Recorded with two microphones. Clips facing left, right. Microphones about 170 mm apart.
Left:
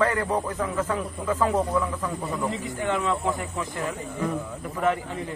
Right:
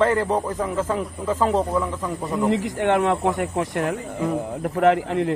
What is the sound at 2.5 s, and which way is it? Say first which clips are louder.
A man's voice: right 7 dB; 85° right.